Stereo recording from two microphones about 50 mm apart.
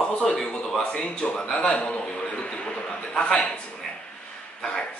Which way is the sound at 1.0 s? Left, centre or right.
Left.